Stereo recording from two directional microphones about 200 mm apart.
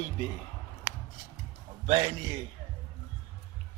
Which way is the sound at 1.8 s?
25° right (ahead or behind).